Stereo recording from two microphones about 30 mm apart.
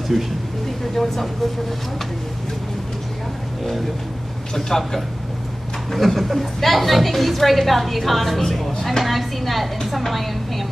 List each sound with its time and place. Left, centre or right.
0.1 s a woman's voice: centre
4.6 s a man's voice: centre
5.9 s a woman's voice: centre